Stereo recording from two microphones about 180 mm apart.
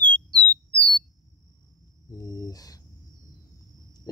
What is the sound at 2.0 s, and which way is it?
Speech, 20° left (ahead or behind).